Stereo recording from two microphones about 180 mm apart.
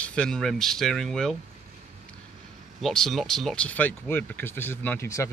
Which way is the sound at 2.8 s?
Centre (ahead or behind).